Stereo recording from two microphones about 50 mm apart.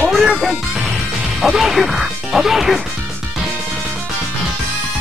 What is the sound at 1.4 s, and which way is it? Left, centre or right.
Speech, centre.